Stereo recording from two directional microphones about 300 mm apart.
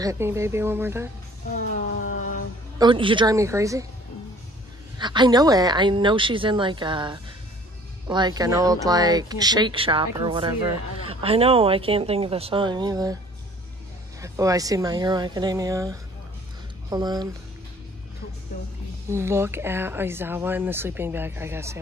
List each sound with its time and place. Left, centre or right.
0.0 s speech: centre
2.8 s speech: centre
4.9 s speech: centre
14.2 s speech: centre
19.0 s speech: centre